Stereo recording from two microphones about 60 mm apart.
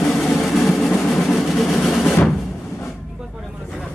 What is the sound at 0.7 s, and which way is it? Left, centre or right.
Music, centre.